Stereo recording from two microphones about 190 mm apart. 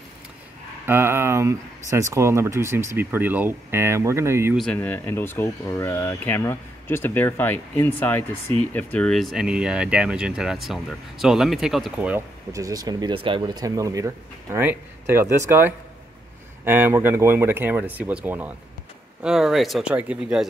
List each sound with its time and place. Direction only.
0.8 s speech: 10° right (ahead or behind)
4.6 s speech: 5° left (ahead or behind)
12.5 s speech: 20° right (ahead or behind)